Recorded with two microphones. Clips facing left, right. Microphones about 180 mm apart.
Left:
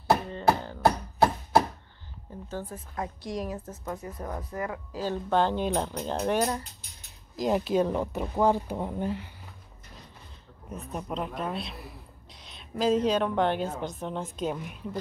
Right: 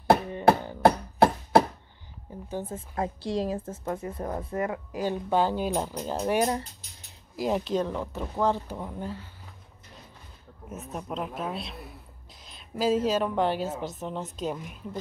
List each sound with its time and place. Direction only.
0.8 s a sound: 60° right (ahead or behind)
2.4 s a woman's voice: 20° right (ahead or behind); by 8.7 s 10° left (ahead or behind)
8.7 s speech: 20° left (ahead or behind)
10.7 s a woman's voice: centre (ahead or behind)